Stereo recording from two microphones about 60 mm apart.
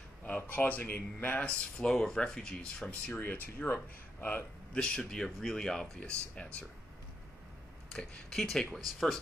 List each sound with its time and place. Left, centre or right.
0.4 s speech: left; by 2.5 s centre
2.9 s speech: left
4.7 s speech: centre
7.9 s speech: centre